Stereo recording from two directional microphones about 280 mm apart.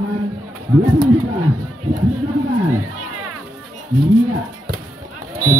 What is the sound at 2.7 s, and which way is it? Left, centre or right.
Music, right.